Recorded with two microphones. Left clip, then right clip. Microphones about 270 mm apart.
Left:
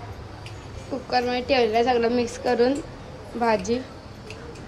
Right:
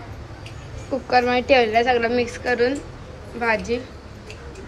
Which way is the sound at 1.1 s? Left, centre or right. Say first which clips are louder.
Right 5 dB; centre.